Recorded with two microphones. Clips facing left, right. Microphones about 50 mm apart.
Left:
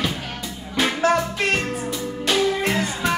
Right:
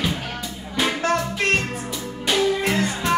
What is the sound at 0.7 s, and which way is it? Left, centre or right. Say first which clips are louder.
Music: left 2 dB; centre.